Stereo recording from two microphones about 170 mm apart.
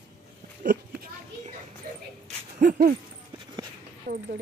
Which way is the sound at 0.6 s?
55° right (ahead or behind).